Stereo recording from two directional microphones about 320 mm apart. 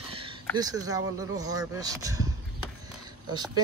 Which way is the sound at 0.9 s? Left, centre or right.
Centre.